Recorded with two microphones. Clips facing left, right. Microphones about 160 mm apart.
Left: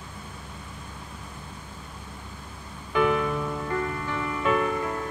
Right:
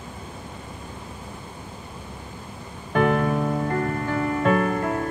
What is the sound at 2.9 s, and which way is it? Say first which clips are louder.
Music: right 3 dB; 50° right (ahead or behind).